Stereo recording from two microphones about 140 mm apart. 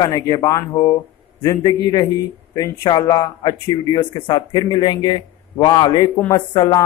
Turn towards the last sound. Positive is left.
turn(degrees=30)  # may be behind; listen again after turning